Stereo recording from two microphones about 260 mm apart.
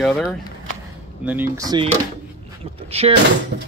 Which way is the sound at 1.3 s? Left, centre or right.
Centre.